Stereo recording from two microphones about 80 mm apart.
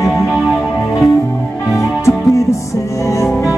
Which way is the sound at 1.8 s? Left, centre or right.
Left.